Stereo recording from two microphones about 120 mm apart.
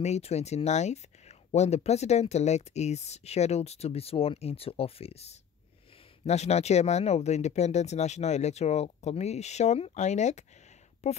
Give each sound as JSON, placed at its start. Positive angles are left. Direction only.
{"t": 0.0, "sound": "speech", "side_deg": 65}
{"t": 11.0, "sound": "speech", "side_deg": 65}